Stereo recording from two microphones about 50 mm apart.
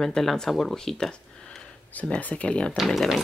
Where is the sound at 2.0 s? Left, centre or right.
Left.